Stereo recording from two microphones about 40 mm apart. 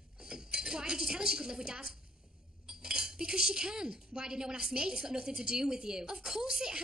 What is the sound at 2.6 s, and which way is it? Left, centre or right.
Cutlery, centre.